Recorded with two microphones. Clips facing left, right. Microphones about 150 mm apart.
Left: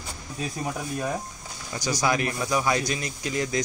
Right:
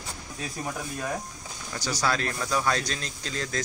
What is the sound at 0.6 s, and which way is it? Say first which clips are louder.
Speech: left 3 dB; 15° left (ahead or behind).